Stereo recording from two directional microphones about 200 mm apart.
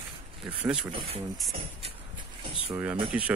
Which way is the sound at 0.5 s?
5° right (ahead or behind).